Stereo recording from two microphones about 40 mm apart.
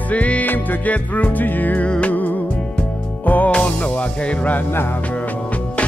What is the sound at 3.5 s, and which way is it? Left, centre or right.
Music, left.